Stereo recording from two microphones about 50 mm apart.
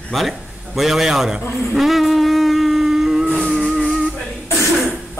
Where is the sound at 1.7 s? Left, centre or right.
Centre.